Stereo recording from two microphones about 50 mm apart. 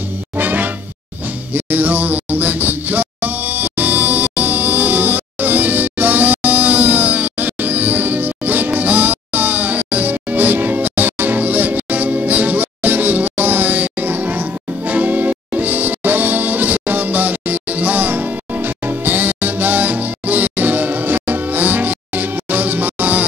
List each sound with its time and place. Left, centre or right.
0.4 s music: right